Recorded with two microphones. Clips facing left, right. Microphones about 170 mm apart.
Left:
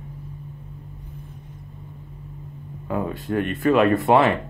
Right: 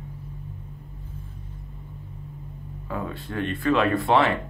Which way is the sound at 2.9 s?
15° left (ahead or behind).